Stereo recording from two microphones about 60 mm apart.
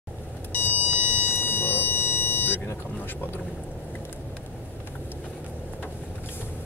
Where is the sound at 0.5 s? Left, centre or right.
Left.